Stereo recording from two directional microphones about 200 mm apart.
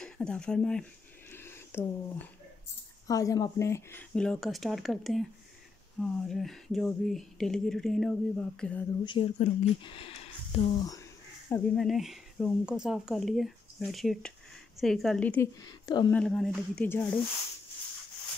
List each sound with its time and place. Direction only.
0.0 s speech: 5° left (ahead or behind)
1.3 s a sound: 10° left (ahead or behind)
3.1 s speech: 15° left (ahead or behind)
9.0 s speech: 25° left (ahead or behind)
11.4 s speech: 10° left (ahead or behind)
15.6 s speech: 20° left (ahead or behind)
16.1 s speech: 5° left (ahead or behind)